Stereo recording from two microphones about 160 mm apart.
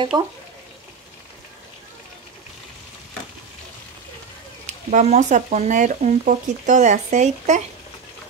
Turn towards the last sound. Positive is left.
turn(degrees=-50)  # may be behind; listen again after turning